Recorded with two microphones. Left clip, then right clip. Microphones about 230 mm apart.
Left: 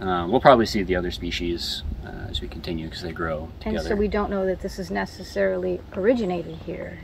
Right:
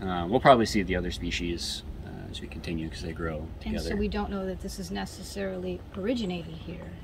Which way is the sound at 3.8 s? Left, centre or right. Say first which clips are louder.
Left 8 dB; centre.